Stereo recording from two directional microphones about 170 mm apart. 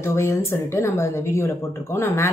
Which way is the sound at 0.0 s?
15° left (ahead or behind).